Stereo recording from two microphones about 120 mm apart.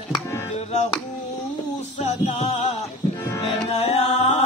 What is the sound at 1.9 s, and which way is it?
Music, 85° left.